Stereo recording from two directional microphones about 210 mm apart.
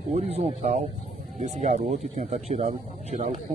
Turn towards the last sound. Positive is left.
turn(degrees=-35)  # may be behind; listen again after turning